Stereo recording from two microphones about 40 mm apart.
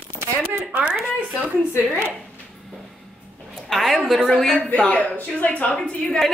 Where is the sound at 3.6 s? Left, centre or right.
Centre.